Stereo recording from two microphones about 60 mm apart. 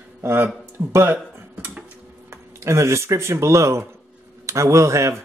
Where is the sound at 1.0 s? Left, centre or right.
Right.